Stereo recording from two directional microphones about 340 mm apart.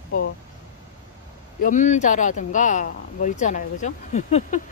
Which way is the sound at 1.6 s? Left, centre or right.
Left.